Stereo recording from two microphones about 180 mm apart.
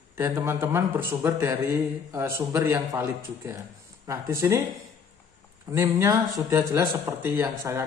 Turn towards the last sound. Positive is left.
turn(degrees=-15)  # may be behind; listen again after turning